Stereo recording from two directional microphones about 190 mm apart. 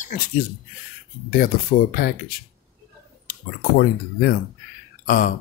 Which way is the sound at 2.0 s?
50° left (ahead or behind).